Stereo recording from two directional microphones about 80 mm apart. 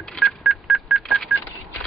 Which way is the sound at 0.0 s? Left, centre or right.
Centre.